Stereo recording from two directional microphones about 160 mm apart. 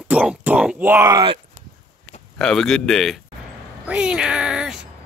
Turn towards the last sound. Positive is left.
turn(degrees=-5)  # may be behind; listen again after turning